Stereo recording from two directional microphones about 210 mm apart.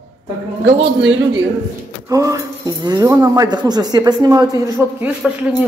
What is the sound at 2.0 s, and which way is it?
Speech, 15° right (ahead or behind).